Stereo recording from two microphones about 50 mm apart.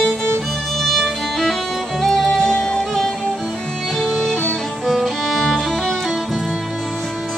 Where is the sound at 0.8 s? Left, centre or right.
Centre.